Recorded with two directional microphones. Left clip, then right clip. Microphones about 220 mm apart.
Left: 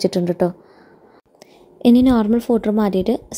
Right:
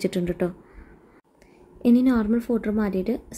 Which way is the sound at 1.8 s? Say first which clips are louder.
Left 6 dB; 25° left (ahead or behind).